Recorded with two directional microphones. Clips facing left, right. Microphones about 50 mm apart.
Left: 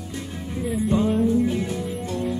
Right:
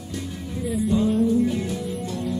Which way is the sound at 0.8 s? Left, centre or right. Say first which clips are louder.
Even; left.